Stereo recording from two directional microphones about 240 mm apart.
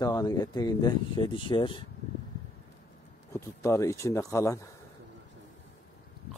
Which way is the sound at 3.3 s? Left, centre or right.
Centre.